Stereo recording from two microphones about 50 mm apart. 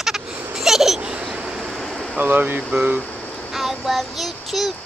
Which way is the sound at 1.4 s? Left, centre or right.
Centre.